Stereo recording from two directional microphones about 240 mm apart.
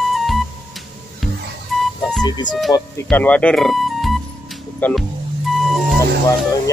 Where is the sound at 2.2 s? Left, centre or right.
Centre.